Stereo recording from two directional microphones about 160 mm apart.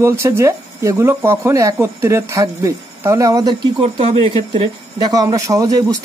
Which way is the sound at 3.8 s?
40° right (ahead or behind).